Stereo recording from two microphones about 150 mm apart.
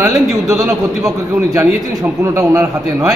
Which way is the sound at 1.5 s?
25° right (ahead or behind).